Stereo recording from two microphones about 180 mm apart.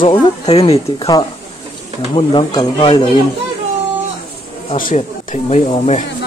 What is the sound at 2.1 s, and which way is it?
Speech, 25° left (ahead or behind).